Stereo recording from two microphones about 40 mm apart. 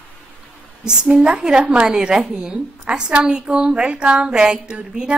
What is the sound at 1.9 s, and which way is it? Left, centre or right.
A woman's voice, centre.